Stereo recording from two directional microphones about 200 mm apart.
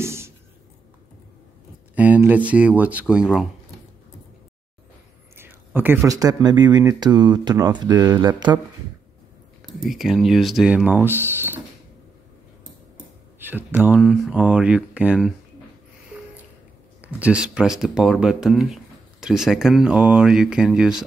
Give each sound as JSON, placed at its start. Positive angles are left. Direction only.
{"t": 0.0, "sound": "a sound", "side_deg": -15}
{"t": 2.0, "sound": "speech", "side_deg": -10}
{"t": 5.3, "sound": "speech", "side_deg": -10}
{"t": 9.7, "sound": "speech", "side_deg": 0}
{"t": 13.4, "sound": "speech", "side_deg": -10}
{"t": 17.0, "sound": "speech", "side_deg": -5}